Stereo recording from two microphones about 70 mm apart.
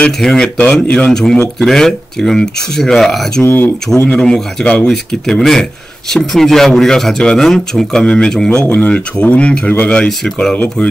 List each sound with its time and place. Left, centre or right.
0.2 s speech: centre
3.4 s speech: left
4.0 s a man's voice: centre
4.8 s speech: centre
8.6 s a man's voice: left
9.9 s speech: centre
10.5 s a man's voice: left